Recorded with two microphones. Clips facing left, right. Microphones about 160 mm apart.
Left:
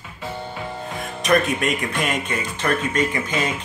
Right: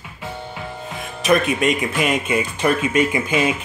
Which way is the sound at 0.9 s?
Centre (ahead or behind).